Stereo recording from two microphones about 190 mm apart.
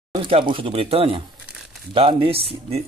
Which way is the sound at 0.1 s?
25° right (ahead or behind).